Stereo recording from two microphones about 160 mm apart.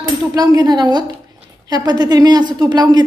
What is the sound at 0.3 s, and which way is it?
A woman's voice, 20° right (ahead or behind).